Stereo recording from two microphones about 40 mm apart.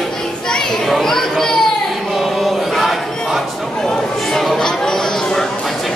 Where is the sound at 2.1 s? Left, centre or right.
Centre.